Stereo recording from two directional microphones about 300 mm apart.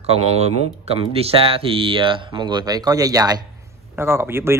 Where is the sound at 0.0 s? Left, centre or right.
Right.